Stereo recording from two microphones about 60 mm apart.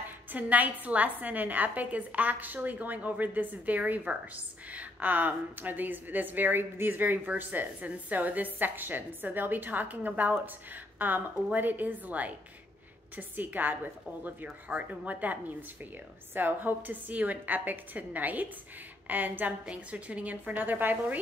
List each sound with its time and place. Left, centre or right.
0.3 s a woman's voice: right
19.6 s a woman's voice: centre